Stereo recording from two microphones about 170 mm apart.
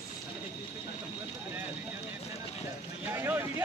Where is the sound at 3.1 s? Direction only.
10° right (ahead or behind).